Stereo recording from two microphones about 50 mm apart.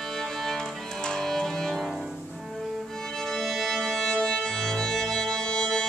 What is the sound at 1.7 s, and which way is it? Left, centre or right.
Music, centre.